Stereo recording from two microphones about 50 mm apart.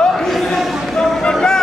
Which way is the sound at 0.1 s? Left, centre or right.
Centre.